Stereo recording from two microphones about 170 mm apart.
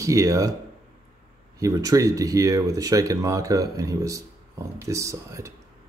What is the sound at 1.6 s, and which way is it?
Speech, 20° right (ahead or behind).